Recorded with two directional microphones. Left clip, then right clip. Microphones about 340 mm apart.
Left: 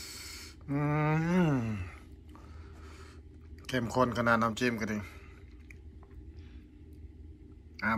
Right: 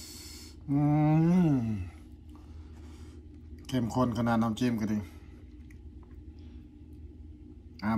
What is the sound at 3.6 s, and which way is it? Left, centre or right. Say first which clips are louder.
Speech: left 1 dB; centre.